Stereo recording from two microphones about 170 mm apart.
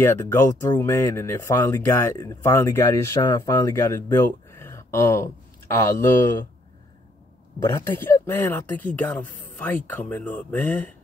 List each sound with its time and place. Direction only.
0.0 s speech: 15° left (ahead or behind)
7.6 s speech: 15° left (ahead or behind)